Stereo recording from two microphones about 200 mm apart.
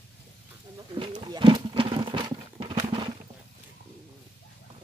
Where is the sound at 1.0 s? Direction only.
25° right (ahead or behind).